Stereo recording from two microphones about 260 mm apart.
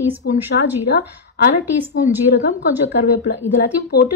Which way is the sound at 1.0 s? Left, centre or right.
Left.